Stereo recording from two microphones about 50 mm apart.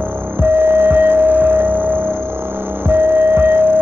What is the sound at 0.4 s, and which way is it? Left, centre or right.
Music, right.